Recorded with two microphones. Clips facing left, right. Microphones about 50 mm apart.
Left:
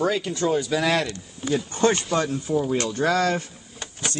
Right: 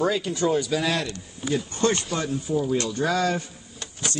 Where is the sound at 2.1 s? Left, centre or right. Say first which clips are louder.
Left 4 dB; left.